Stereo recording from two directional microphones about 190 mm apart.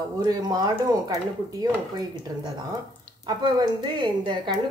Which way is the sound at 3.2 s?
25° right (ahead or behind).